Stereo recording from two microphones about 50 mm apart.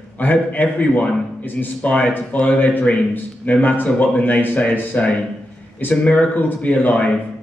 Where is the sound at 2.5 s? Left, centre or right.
Left.